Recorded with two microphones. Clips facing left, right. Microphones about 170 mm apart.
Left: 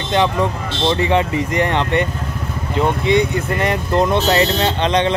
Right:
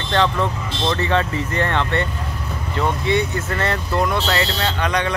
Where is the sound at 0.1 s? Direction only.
15° left (ahead or behind).